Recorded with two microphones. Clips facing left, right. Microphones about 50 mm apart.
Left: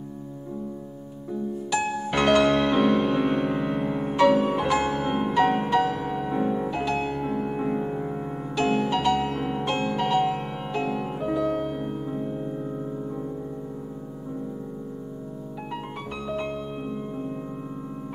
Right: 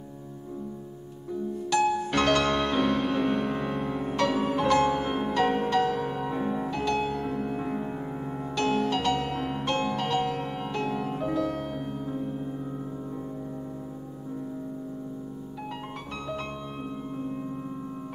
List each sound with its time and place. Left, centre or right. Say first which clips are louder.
1.7 s music: right 3 dB; centre